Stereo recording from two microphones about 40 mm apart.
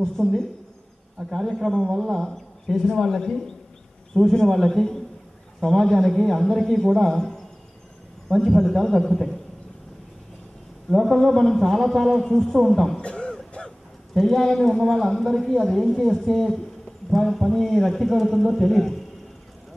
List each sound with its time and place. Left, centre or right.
0.2 s a man's voice: centre
10.9 s a man's voice: centre
12.5 s a man's voice: centre
13.0 s a sound: left
14.1 s a man's voice: centre